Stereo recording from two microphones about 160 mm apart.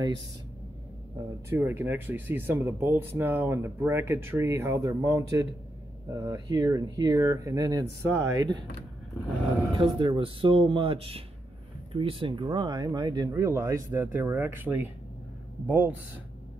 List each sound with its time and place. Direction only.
1.5 s speech: 15° right (ahead or behind)
9.9 s speech: 30° right (ahead or behind); by 15.9 s 10° right (ahead or behind)